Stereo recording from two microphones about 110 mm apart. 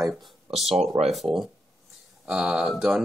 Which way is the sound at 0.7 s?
75° right (ahead or behind).